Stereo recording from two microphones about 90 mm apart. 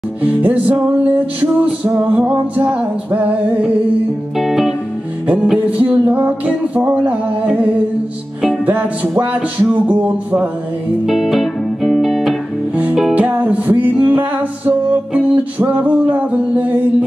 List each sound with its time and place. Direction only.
0.2 s music: 20° right (ahead or behind)
4.4 s music: 5° right (ahead or behind)
5.2 s music: 15° right (ahead or behind)
11.1 s music: centre (ahead or behind)
13.1 s music: 15° right (ahead or behind)